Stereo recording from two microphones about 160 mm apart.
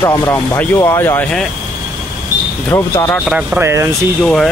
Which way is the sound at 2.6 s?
20° left (ahead or behind).